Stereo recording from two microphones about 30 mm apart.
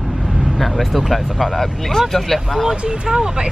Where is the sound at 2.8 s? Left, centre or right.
Right.